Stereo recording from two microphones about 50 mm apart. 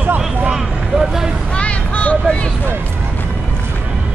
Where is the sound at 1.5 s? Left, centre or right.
Left.